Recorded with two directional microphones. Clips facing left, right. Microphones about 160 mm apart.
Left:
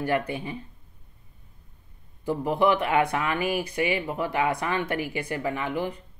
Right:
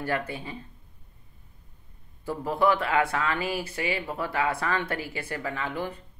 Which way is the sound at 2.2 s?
15° left (ahead or behind).